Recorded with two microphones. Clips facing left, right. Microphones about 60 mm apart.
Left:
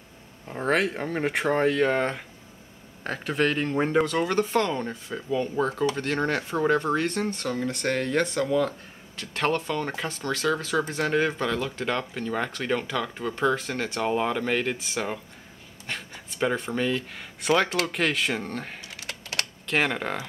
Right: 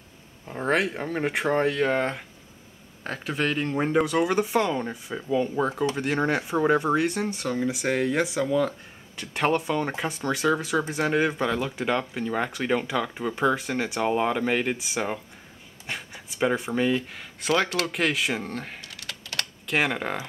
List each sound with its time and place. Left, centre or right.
0.5 s speech: centre
18.9 s typing: left
19.7 s speech: centre